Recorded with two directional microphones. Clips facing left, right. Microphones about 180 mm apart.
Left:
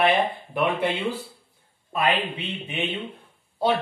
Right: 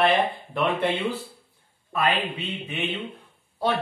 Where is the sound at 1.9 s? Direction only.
20° left (ahead or behind).